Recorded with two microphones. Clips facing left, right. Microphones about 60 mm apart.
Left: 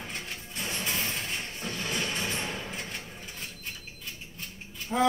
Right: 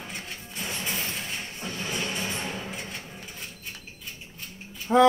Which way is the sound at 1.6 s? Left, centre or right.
Centre.